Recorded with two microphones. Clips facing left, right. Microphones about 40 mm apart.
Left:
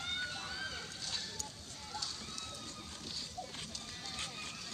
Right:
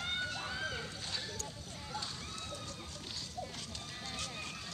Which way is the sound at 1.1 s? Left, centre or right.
Centre.